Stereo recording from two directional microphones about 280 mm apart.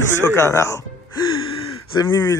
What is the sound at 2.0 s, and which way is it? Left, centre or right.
Speech, centre.